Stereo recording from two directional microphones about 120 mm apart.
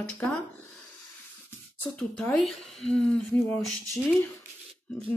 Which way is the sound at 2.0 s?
5° left (ahead or behind).